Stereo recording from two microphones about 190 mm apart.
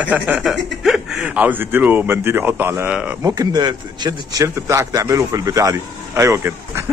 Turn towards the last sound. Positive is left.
turn(degrees=-15)  # may be behind; listen again after turning